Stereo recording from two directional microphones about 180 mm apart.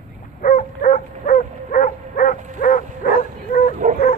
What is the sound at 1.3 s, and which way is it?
Bow-wow, 50° left (ahead or behind).